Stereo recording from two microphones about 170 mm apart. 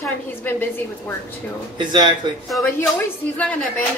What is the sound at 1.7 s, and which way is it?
Speech, 25° right (ahead or behind).